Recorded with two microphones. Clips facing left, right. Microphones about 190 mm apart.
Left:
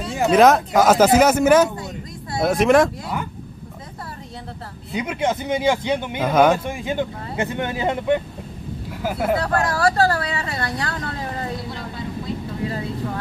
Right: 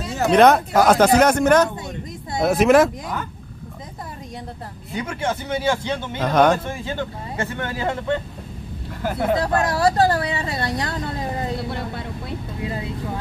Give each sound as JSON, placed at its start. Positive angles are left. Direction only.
{"t": 0.1, "sound": "a sound", "side_deg": 10}
{"t": 0.4, "sound": "speech", "side_deg": 0}
{"t": 4.9, "sound": "speech", "side_deg": 20}
{"t": 6.2, "sound": "speech", "side_deg": 5}
{"t": 6.6, "sound": "speech", "side_deg": 15}
{"t": 9.0, "sound": "speech", "side_deg": 5}
{"t": 9.4, "sound": "speech", "side_deg": -20}